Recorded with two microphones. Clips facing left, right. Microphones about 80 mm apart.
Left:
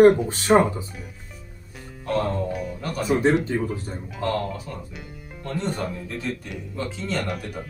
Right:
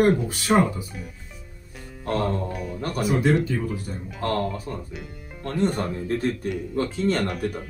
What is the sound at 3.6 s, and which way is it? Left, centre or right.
Speech, left.